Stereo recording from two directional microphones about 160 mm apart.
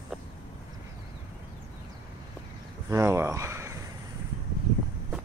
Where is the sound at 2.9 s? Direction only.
20° right (ahead or behind).